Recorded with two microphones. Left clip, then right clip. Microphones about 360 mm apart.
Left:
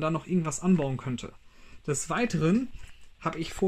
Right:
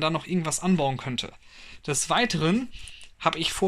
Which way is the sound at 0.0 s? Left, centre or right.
Centre.